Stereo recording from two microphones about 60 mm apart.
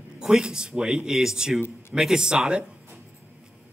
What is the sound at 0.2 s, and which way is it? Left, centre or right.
A man's voice, centre.